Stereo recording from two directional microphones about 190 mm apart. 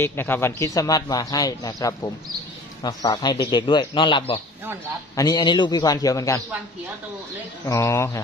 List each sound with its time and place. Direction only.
0.0 s a man's voice: 10° left (ahead or behind)
7.6 s a man's voice: 15° left (ahead or behind)